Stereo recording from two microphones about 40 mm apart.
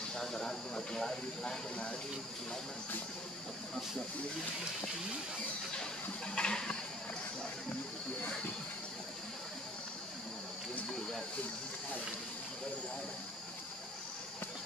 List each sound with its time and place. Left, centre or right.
0.1 s speech: centre
6.3 s speech: left